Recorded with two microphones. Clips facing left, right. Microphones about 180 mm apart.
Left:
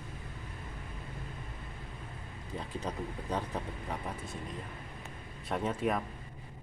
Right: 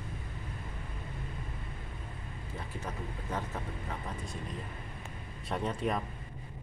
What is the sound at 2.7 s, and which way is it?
Speech, 15° left (ahead or behind).